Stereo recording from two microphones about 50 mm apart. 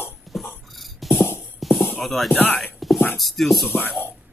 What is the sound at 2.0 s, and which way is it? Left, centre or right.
Speech, centre.